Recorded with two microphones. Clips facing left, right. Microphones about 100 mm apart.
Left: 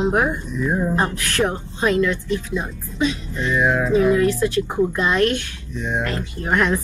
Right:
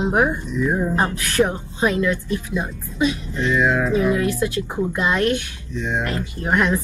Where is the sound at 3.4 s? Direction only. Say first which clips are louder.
Even; 15° left (ahead or behind).